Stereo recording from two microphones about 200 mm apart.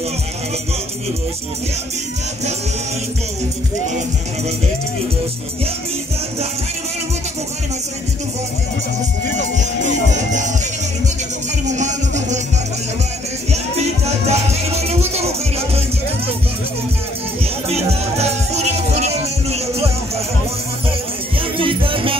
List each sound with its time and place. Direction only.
9.8 s music: 35° right (ahead or behind)
11.6 s music: 35° right (ahead or behind)
13.5 s music: 30° right (ahead or behind)
17.6 s music: 30° right (ahead or behind)
21.4 s music: 25° right (ahead or behind)